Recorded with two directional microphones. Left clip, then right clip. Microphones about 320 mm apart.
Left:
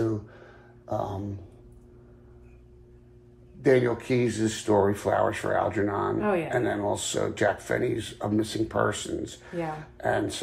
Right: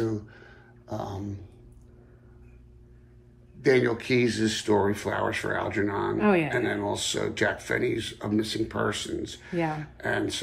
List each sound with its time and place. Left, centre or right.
0.8 s speech: centre
3.6 s speech: centre
6.1 s speech: right
6.5 s speech: centre